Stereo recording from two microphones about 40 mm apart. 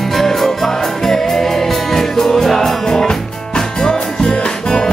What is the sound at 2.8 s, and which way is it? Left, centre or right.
Music, centre.